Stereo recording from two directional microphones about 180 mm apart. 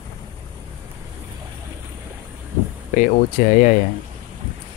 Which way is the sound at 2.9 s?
45° left (ahead or behind).